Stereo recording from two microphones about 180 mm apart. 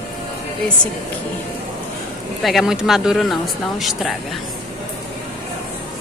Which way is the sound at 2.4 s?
Centre (ahead or behind).